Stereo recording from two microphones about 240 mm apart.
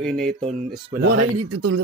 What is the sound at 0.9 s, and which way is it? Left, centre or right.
Speech, right.